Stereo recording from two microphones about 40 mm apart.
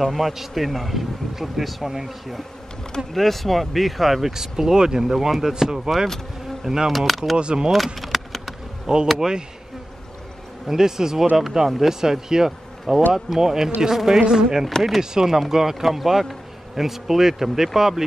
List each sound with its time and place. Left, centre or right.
0.0 s a man's voice: centre
3.1 s speech: centre
6.6 s insect: centre
6.9 s a man's voice: centre
7.3 s speech: right
7.7 s vehicle: centre
8.9 s speech: centre
10.7 s speech: centre